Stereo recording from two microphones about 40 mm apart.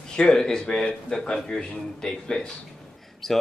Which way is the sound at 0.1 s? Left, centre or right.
Centre.